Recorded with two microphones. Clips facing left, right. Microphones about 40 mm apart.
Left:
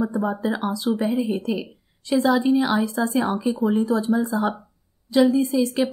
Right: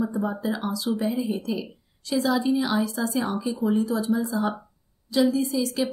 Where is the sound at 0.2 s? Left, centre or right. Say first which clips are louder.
Left 3 dB; centre.